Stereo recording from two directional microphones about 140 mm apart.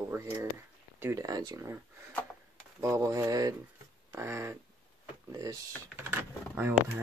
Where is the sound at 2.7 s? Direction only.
20° right (ahead or behind).